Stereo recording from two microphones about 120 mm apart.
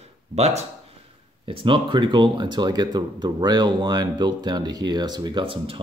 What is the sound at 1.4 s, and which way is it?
Speech, 50° right (ahead or behind).